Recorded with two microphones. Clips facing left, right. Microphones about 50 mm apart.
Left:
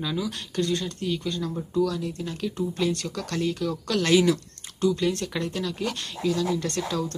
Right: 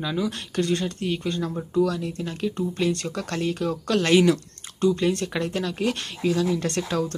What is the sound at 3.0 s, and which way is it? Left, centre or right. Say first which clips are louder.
Speech: right 1 dB; right.